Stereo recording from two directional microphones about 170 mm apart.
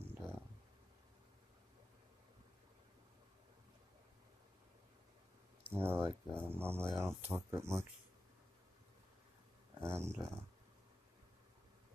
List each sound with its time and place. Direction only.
0.0 s a sound: 15° right (ahead or behind)
5.7 s speech: 15° right (ahead or behind)
9.8 s speech: 15° right (ahead or behind)